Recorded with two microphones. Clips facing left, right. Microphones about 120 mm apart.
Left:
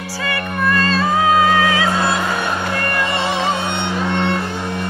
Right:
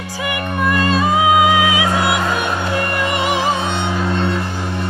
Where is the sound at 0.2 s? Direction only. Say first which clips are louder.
Right 1 dB; 15° right (ahead or behind).